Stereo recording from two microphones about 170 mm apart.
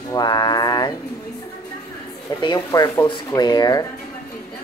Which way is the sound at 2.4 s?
20° left (ahead or behind).